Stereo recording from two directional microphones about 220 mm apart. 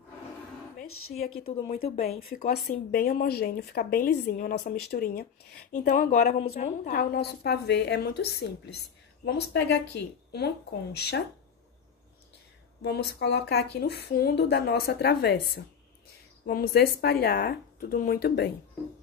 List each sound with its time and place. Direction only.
2.3 s a woman's voice: 45° left (ahead or behind)
12.8 s a woman's voice: 50° left (ahead or behind)